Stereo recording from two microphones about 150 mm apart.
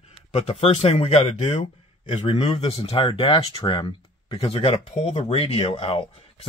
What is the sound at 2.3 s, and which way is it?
Speech, 35° left (ahead or behind).